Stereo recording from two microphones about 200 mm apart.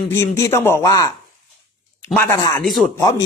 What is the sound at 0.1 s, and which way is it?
Speech, 15° left (ahead or behind).